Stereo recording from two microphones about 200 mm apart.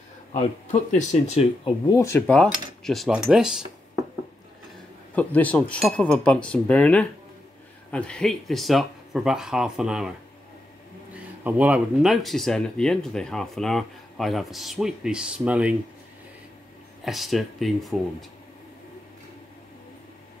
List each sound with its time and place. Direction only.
0.3 s speech: 35° left (ahead or behind)
2.0 s speech: 10° left (ahead or behind)
5.1 s speech: 5° left (ahead or behind)
11.4 s speech: 5° right (ahead or behind)
17.0 s speech: centre (ahead or behind)